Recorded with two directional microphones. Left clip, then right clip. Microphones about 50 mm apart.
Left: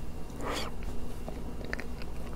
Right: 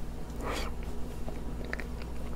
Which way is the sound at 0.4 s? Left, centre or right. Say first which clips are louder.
Left 1 dB; left.